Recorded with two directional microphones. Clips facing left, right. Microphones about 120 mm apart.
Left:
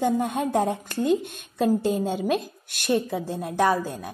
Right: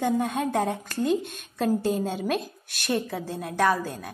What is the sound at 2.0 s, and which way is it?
A woman's voice, 10° left (ahead or behind).